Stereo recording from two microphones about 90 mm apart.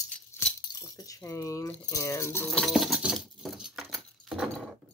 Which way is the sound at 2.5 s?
Centre (ahead or behind).